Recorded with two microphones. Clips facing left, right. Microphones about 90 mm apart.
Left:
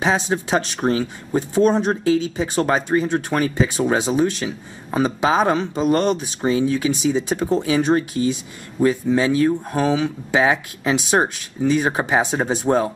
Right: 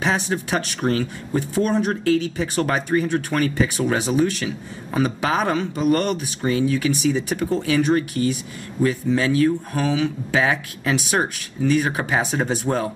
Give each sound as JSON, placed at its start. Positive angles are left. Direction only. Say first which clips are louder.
{"t": 0.0, "sound": "speech", "louder": "left 2 dB", "side_deg": 20}